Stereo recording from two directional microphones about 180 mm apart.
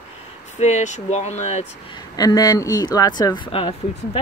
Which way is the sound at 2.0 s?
20° left (ahead or behind).